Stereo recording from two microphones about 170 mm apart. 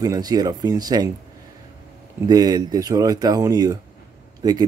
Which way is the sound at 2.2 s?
25° right (ahead or behind).